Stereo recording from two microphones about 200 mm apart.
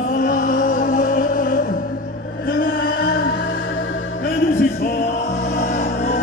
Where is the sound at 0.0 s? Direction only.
40° left (ahead or behind).